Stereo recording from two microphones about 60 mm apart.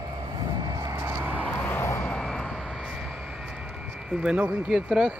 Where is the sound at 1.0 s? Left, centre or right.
Right.